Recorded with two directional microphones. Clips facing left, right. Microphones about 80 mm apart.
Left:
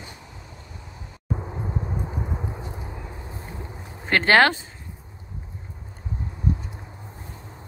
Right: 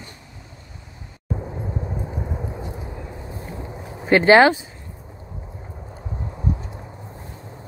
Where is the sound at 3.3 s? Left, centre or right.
Right.